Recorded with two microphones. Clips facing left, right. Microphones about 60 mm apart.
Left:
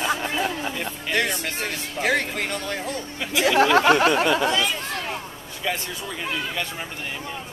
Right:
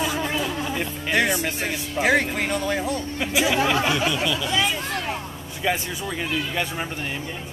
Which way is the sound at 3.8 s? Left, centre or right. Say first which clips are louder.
Left 6 dB; left.